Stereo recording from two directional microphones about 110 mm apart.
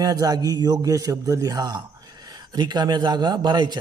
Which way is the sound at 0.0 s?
35° right (ahead or behind).